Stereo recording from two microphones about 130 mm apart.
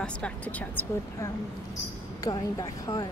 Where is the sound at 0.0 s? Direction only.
10° left (ahead or behind).